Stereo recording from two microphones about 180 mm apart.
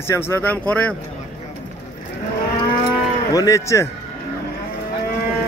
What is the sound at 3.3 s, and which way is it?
Speech, 20° left (ahead or behind).